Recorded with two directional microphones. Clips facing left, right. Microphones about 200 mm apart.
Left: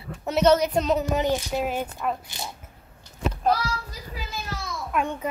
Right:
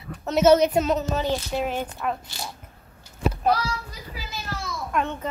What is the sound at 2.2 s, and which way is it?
Speech, 20° left (ahead or behind).